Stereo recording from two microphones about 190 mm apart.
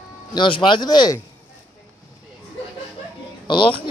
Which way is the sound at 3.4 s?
25° left (ahead or behind).